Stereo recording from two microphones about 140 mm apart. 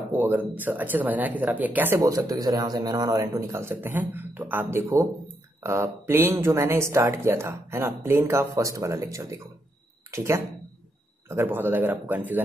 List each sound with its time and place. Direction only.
0.1 s speech: 15° right (ahead or behind)